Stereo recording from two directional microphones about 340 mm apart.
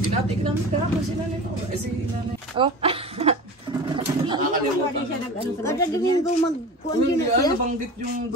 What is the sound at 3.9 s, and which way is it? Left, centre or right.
Goat, centre.